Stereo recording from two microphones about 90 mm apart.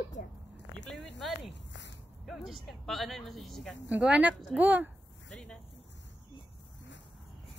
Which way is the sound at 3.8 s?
15° right (ahead or behind).